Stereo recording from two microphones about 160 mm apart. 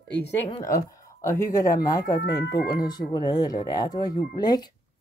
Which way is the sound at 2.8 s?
25° left (ahead or behind).